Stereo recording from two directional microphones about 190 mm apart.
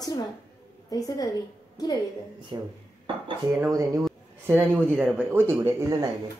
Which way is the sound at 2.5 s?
25° right (ahead or behind).